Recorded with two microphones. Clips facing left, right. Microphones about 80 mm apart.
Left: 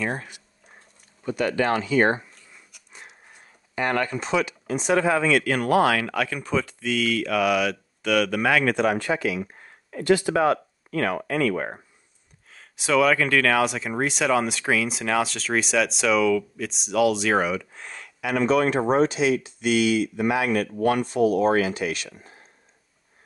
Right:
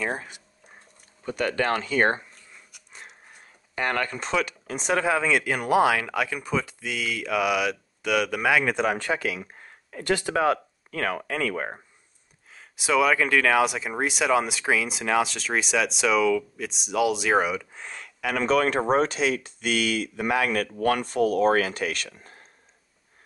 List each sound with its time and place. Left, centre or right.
0.0 s speech: centre
1.2 s speech: right
3.8 s speech: left
4.4 s speech: right
5.0 s speech: centre
8.9 s speech: right
12.5 s speech: centre
18.2 s speech: right